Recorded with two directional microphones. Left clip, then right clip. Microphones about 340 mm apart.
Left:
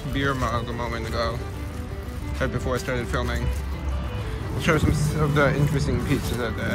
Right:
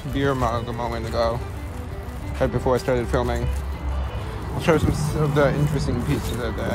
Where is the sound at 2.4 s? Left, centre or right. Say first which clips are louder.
Right 6 dB; centre.